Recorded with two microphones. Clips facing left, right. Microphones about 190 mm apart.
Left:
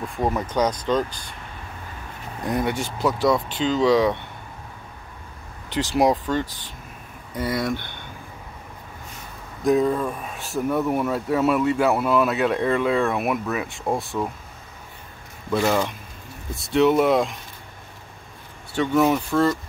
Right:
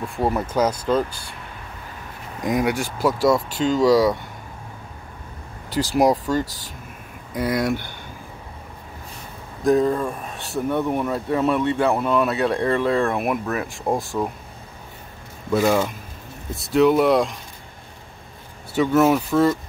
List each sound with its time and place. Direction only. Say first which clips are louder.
0.2 s speech: right 2 dB; 5° right (ahead or behind)
2.4 s speech: right 3 dB; 10° right (ahead or behind)
3.4 s speech: right 2 dB; 45° right (ahead or behind)
5.7 s speech: right 2 dB; 40° right (ahead or behind)
5.9 s speech: right 1 dB; centre (ahead or behind)
6.3 s speech: right 2 dB; 40° right (ahead or behind)
7.3 s speech: right 3 dB; 10° right (ahead or behind)
9.7 s speech: right 1 dB; centre (ahead or behind)
12.6 s speech: right 2 dB; 35° right (ahead or behind)
12.9 s speech: right 1 dB; centre (ahead or behind)
15.5 s speech: right 2 dB; 5° right (ahead or behind)
18.8 s speech: right 2 dB; centre (ahead or behind)